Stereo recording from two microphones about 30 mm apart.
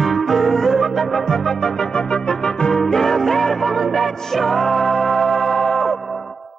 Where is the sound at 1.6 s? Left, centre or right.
Centre.